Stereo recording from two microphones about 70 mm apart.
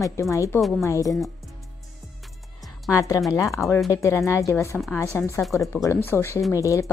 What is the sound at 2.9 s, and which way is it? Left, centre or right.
A woman's voice, left.